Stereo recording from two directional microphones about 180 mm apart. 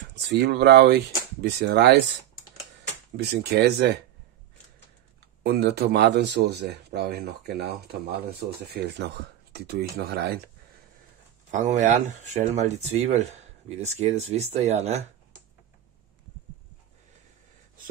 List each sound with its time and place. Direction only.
0.1 s speech: 75° right (ahead or behind)
3.2 s speech: 65° right (ahead or behind)
5.4 s speech: 60° right (ahead or behind)
11.5 s speech: 40° right (ahead or behind)